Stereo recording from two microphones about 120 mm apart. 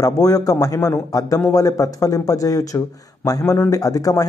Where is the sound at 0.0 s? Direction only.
30° left (ahead or behind).